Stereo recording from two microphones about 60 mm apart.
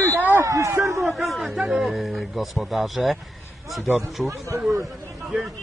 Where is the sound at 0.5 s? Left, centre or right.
Right.